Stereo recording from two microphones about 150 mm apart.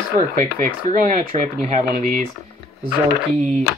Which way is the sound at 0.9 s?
75° right (ahead or behind).